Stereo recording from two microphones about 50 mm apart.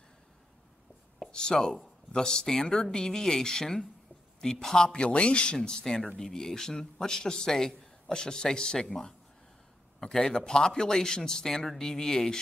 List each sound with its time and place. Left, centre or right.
1.3 s a man's voice: centre
10.1 s a man's voice: centre